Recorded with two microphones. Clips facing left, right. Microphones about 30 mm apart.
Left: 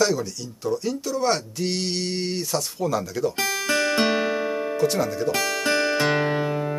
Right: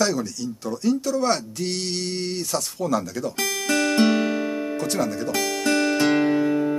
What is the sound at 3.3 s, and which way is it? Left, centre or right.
Music, left.